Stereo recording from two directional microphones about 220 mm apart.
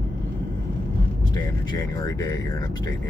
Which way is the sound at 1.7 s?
15° left (ahead or behind).